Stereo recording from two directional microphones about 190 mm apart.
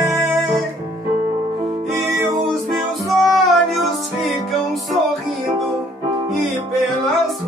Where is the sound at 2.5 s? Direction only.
Centre (ahead or behind).